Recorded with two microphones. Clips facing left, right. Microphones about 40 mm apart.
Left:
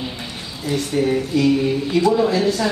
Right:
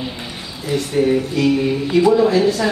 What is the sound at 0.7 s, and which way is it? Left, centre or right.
Speech, centre.